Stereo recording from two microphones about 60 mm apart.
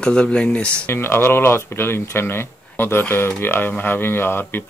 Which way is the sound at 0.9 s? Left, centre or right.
Left.